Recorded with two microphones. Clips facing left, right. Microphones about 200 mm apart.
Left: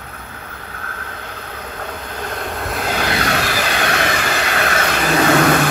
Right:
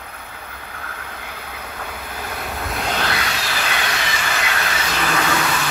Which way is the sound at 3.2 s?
60° left (ahead or behind).